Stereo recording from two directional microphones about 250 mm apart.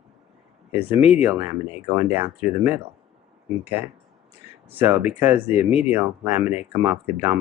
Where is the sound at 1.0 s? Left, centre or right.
Left.